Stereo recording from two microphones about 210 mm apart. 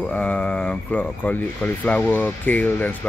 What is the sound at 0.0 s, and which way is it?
Speech, 5° left (ahead or behind).